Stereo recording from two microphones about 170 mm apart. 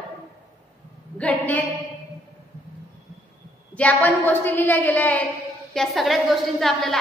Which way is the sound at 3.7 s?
10° left (ahead or behind).